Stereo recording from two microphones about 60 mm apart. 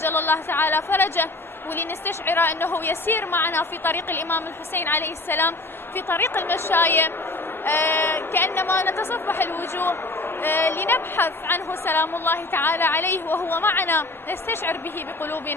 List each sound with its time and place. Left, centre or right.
0.0 s a woman's voice: left